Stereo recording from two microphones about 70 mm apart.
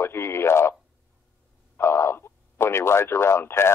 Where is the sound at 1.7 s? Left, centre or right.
Left.